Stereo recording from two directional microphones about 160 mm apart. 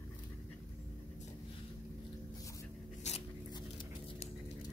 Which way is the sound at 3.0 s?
45° left (ahead or behind).